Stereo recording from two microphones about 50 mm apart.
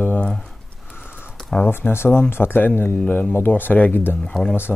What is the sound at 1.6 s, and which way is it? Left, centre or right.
Speech, left.